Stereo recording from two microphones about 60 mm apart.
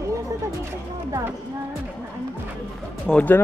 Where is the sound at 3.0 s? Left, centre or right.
Left.